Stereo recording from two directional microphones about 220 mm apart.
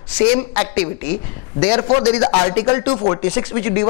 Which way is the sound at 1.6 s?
20° left (ahead or behind).